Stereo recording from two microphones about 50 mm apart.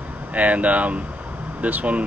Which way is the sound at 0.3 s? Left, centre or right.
Right.